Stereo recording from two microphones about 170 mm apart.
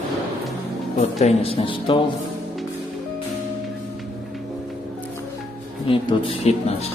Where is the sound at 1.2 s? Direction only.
35° left (ahead or behind).